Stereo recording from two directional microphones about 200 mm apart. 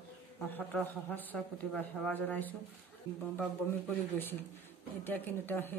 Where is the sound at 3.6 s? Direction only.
5° left (ahead or behind).